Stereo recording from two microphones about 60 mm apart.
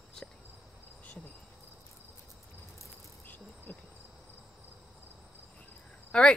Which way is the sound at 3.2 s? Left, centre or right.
Left.